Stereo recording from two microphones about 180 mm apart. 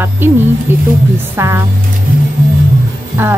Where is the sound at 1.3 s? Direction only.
15° right (ahead or behind).